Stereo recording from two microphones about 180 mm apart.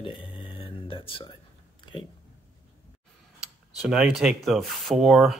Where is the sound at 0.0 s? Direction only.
30° left (ahead or behind).